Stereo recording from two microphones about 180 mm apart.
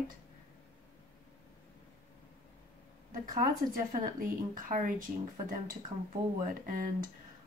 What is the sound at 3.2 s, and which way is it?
Speech, 50° right (ahead or behind).